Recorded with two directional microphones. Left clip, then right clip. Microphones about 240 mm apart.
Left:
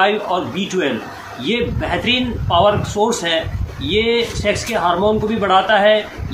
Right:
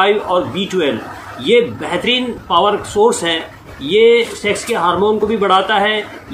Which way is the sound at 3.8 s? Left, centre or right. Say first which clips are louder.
Right 6 dB; centre.